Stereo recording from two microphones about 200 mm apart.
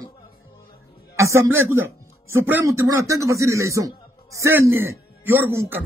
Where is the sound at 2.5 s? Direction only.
10° right (ahead or behind).